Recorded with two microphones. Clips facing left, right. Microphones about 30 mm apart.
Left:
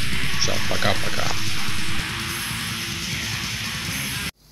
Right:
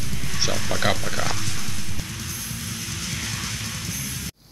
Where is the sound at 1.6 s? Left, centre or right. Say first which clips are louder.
Left 6 dB; left.